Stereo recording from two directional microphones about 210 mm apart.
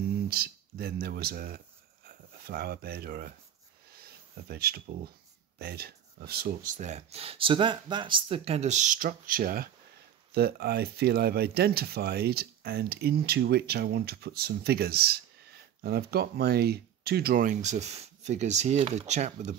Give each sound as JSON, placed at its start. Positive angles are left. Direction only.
{"t": 0.3, "sound": "speech", "side_deg": -45}
{"t": 3.9, "sound": "a sound", "side_deg": -45}
{"t": 5.6, "sound": "speech", "side_deg": -45}